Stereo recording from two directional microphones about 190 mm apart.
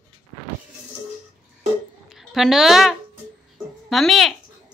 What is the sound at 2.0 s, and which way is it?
A woman's voice, centre (ahead or behind).